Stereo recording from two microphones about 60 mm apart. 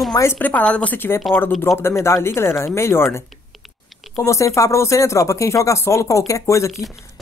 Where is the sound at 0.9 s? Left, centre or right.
Left.